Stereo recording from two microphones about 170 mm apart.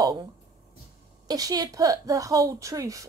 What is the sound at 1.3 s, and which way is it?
Speech, 20° right (ahead or behind).